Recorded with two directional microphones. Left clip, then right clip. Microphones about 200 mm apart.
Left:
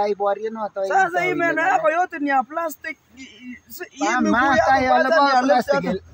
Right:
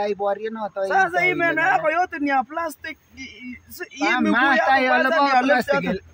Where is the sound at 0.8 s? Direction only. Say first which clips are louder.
Even; 5° left (ahead or behind).